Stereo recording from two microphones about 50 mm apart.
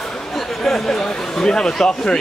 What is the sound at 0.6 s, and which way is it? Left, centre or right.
Speech, centre.